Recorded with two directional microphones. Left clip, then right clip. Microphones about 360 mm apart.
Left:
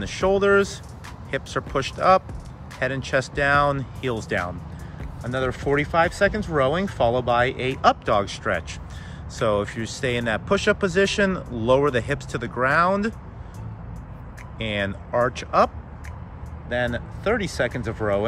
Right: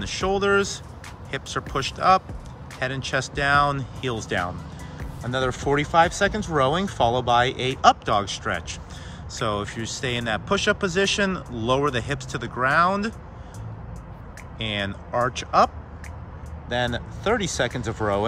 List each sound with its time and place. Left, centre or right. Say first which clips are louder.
0.0 s speech: left 3 dB; centre
14.6 s speech: left 1 dB; centre